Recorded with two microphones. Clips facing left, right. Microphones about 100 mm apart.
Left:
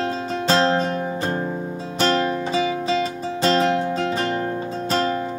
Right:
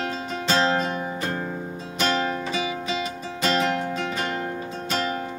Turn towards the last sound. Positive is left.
turn(degrees=35)  # may be behind; listen again after turning